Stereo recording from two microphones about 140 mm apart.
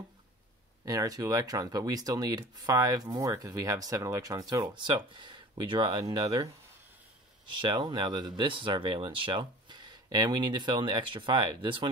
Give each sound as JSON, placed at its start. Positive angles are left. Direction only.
{"t": 0.8, "sound": "speech", "side_deg": -25}
{"t": 7.6, "sound": "speech", "side_deg": -30}